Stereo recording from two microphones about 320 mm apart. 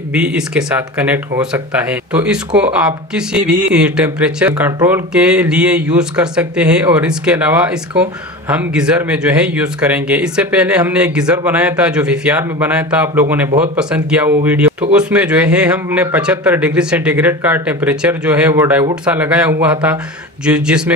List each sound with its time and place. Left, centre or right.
0.1 s speech: centre